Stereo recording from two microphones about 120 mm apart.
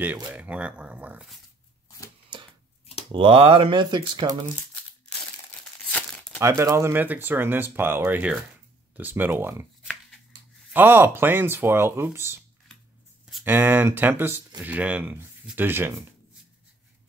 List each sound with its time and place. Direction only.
0.0 s speech: 15° right (ahead or behind)
3.1 s speech: 45° right (ahead or behind)
5.9 s crumpling: 10° left (ahead or behind)
6.4 s speech: 25° right (ahead or behind)
10.7 s speech: 15° right (ahead or behind)